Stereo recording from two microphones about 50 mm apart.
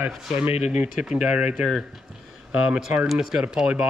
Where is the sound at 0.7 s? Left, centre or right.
Centre.